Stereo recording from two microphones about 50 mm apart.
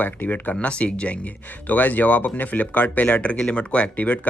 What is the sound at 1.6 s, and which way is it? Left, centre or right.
Speech, left.